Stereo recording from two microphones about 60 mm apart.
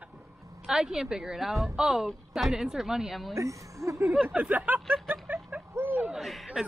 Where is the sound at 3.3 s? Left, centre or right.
Right.